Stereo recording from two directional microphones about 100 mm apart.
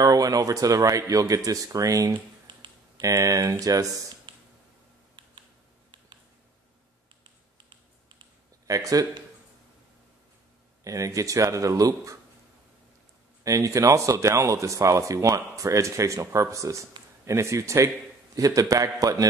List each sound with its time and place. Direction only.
0.0 s speech: 40° right (ahead or behind)
2.1 s computer keyboard: 50° right (ahead or behind)
3.0 s speech: 35° right (ahead or behind)
4.3 s a sound: 55° right (ahead or behind)
8.6 s speech: 35° right (ahead or behind)
10.8 s speech: 35° right (ahead or behind)
13.4 s speech: 35° right (ahead or behind)